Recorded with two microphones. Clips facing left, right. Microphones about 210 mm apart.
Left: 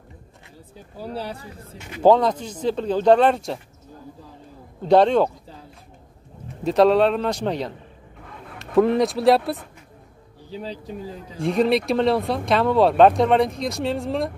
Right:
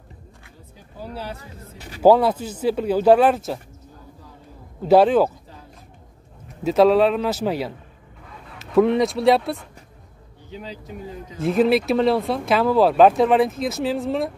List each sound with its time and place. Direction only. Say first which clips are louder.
1.1 s speech: left 2 dB; 30° left (ahead or behind)
2.0 s speech: right 1 dB; 5° right (ahead or behind)
4.8 s speech: right 1 dB; 5° right (ahead or behind)
6.6 s speech: right 1 dB; centre (ahead or behind)
10.5 s speech: left 3 dB; 35° left (ahead or behind)
11.3 s speech: right 2 dB; 5° right (ahead or behind)